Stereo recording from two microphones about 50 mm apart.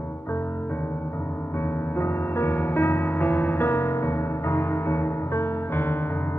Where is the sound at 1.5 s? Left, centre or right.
Left.